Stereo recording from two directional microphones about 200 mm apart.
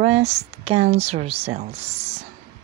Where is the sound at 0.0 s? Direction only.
30° right (ahead or behind).